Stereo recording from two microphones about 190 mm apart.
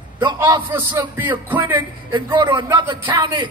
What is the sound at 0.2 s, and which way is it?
Speech, 25° right (ahead or behind).